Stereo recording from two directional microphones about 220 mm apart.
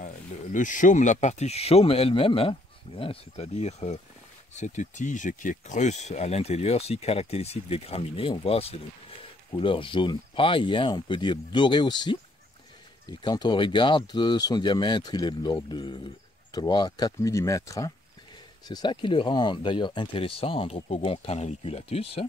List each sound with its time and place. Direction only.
0.5 s speech: 35° left (ahead or behind)